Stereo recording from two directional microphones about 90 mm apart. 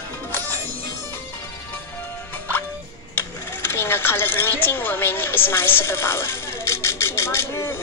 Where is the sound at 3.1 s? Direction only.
25° left (ahead or behind).